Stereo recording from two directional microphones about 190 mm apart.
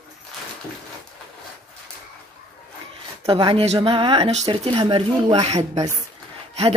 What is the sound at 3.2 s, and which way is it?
Speech, 30° right (ahead or behind).